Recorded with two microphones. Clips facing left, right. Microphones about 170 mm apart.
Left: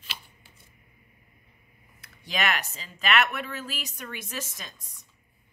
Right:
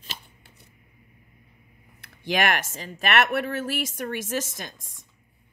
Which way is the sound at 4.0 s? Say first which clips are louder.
Right 8 dB; 55° right (ahead or behind).